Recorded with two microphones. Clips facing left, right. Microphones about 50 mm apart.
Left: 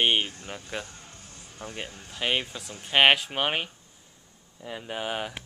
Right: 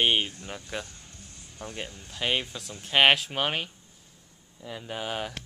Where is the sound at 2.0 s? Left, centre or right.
Centre.